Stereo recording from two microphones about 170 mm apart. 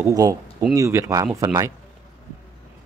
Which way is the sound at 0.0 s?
20° right (ahead or behind).